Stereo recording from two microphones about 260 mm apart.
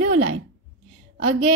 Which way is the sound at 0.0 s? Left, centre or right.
Right.